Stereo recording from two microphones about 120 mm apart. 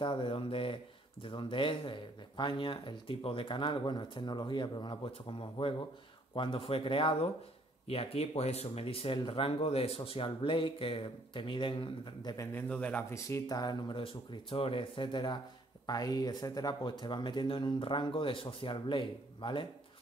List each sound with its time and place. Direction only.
0.0 s speech: 45° left (ahead or behind)
12.5 s a man's voice: 10° left (ahead or behind)
13.1 s speech: 30° left (ahead or behind)